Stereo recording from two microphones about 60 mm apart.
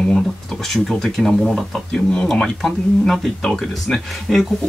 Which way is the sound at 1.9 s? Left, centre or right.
Centre.